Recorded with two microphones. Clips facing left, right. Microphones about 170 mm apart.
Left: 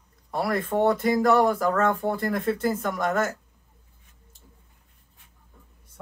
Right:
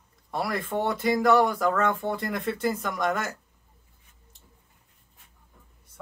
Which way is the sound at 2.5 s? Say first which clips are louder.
Left 2 dB; 25° left (ahead or behind).